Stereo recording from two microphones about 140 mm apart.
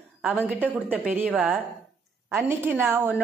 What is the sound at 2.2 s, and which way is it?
Speech, 15° right (ahead or behind).